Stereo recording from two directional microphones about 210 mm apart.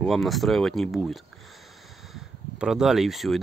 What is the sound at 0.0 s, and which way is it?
Speech, centre (ahead or behind).